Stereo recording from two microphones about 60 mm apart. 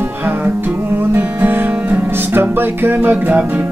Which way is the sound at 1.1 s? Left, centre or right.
Right.